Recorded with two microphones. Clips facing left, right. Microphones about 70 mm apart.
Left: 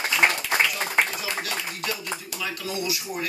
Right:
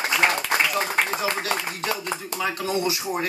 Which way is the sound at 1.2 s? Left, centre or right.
Right.